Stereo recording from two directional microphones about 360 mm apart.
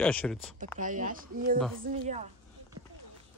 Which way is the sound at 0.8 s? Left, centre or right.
Right.